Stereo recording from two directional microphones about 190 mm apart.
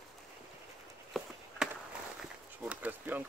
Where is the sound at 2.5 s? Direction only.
10° right (ahead or behind).